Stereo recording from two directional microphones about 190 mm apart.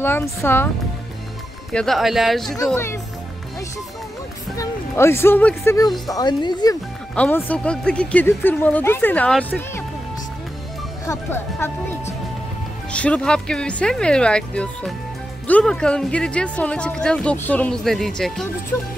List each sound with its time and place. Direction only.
0.0 s speech: 10° left (ahead or behind)
1.7 s speech: 5° left (ahead or behind)
2.6 s speech: 10° left (ahead or behind)
4.6 s speech: 15° left (ahead or behind)
7.2 s speech: 10° left (ahead or behind)
11.1 s speech: 10° left (ahead or behind)